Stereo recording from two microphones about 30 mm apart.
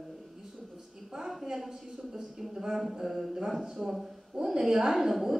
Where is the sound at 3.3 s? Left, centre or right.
Centre.